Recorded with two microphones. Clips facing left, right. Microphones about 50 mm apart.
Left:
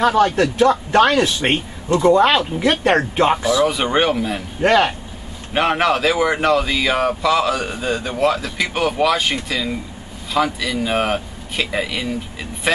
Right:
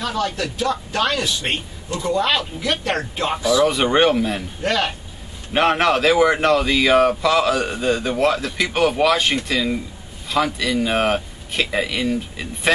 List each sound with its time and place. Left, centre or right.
0.0 s a man's voice: left
3.6 s speech: centre
4.6 s a man's voice: left
5.5 s speech: centre